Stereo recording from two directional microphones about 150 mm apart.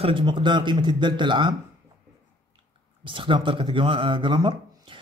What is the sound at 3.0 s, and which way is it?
Speech, 35° right (ahead or behind).